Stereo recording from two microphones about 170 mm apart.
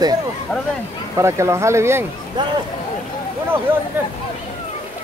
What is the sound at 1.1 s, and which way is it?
Speech, 15° right (ahead or behind).